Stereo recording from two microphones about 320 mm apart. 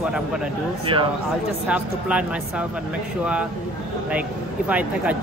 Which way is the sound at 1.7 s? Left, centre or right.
Centre.